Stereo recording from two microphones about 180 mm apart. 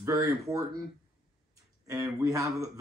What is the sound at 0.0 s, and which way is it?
Speech, 15° right (ahead or behind).